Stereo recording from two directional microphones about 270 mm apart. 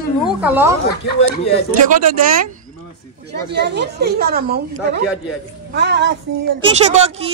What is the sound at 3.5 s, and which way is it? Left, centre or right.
Speech, right.